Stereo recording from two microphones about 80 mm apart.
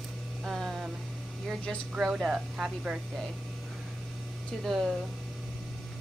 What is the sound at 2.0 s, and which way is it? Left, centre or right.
Speech, centre.